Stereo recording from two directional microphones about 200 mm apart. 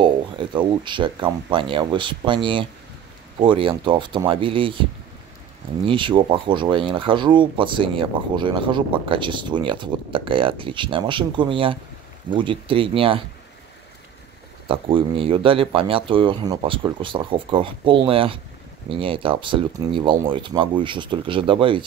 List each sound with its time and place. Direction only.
0.0 s speech: 25° right (ahead or behind)
5.9 s speech: 25° right (ahead or behind)
14.7 s speech: 25° right (ahead or behind)